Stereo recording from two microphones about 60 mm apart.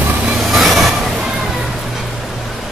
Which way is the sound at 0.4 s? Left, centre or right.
Centre.